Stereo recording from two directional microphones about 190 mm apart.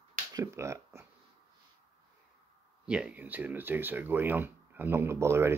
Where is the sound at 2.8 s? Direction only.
5° right (ahead or behind).